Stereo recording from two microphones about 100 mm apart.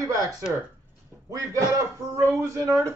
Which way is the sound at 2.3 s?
30° right (ahead or behind).